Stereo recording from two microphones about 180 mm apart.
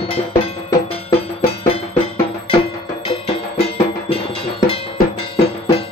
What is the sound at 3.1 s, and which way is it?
Music, 30° left (ahead or behind).